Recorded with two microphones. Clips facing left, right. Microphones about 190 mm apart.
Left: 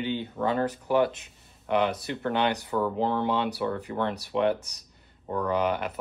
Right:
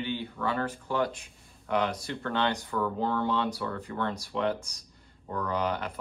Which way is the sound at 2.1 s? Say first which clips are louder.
Left 3 dB; 20° left (ahead or behind).